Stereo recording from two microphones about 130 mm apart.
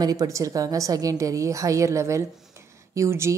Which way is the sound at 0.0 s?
25° right (ahead or behind).